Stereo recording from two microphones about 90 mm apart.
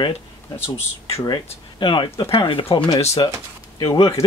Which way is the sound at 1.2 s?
55° left (ahead or behind).